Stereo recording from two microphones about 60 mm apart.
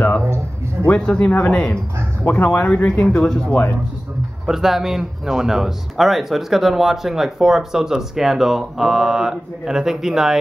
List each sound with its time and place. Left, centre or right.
0.9 s speech: centre
4.5 s speech: centre